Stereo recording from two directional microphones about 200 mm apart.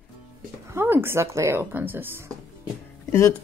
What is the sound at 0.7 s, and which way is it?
Speech, 10° right (ahead or behind).